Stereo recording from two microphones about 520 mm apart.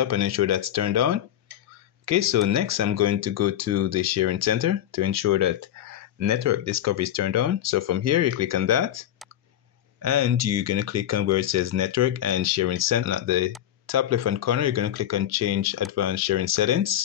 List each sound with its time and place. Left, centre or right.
0.0 s speech: right
10.0 s speech: right